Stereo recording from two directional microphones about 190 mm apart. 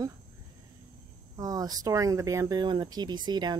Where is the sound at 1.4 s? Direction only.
20° right (ahead or behind).